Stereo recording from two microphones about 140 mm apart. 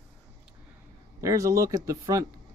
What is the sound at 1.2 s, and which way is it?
Speech, 20° right (ahead or behind).